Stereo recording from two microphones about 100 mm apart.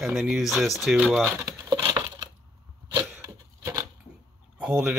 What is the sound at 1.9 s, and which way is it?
Coin, 45° right (ahead or behind).